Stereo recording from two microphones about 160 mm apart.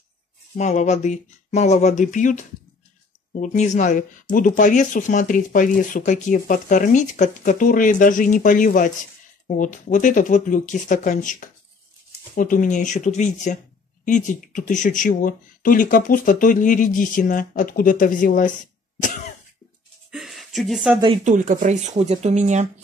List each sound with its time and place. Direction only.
0.6 s speech: 45° left (ahead or behind)
20.1 s a sound: centre (ahead or behind)
21.2 s speech: 50° right (ahead or behind)